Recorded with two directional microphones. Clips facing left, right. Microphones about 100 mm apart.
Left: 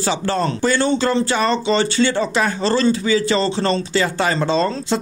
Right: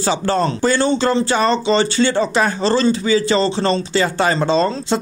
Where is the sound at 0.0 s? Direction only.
35° right (ahead or behind).